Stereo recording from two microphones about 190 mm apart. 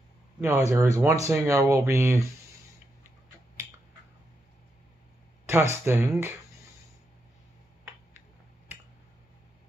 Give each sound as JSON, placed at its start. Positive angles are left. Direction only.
{"t": 0.4, "sound": "speech", "side_deg": -15}
{"t": 5.5, "sound": "speech", "side_deg": -15}